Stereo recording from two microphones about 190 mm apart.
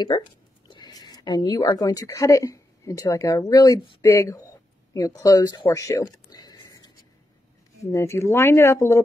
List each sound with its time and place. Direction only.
0.7 s speech: 20° left (ahead or behind)